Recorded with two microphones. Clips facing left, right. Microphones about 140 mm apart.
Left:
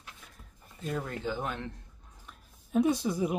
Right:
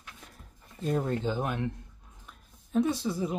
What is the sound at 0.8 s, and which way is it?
Speech, 30° right (ahead or behind).